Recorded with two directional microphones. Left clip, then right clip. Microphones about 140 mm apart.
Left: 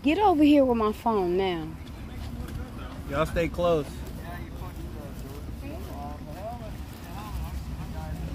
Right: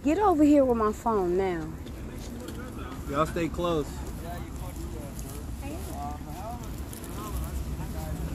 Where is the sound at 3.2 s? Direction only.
55° left (ahead or behind).